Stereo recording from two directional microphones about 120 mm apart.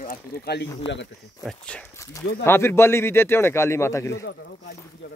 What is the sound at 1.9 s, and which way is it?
Speech, 25° left (ahead or behind).